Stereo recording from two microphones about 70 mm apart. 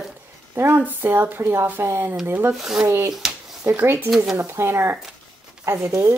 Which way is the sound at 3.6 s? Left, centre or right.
Right.